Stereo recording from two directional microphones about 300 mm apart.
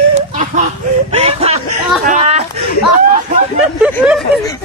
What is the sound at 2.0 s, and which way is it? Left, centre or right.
Speech, right.